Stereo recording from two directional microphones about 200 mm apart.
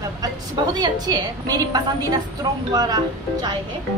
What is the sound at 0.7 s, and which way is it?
A woman's voice, 20° right (ahead or behind).